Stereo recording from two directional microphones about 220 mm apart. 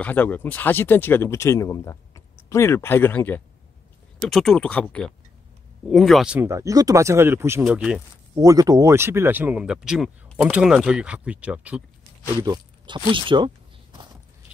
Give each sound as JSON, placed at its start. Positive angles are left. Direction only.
{"t": 0.0, "sound": "speech", "side_deg": 10}
{"t": 8.4, "sound": "speech", "side_deg": -15}
{"t": 12.4, "sound": "speech", "side_deg": -20}